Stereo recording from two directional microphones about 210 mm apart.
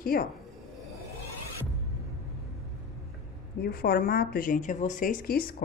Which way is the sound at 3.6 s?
45° left (ahead or behind).